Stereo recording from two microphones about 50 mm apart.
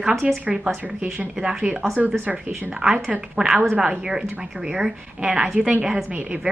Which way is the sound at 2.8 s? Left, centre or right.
Right.